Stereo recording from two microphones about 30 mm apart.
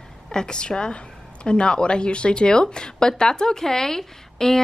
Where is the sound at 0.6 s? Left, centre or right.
Left.